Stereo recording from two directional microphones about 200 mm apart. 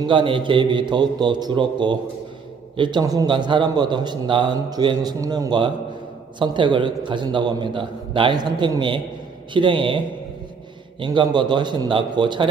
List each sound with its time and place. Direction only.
0.0 s a man's voice: 25° right (ahead or behind)